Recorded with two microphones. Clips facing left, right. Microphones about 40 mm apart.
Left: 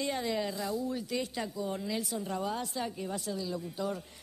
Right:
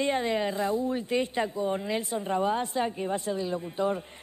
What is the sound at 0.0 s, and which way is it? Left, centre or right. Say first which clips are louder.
Speech: right 6 dB; right.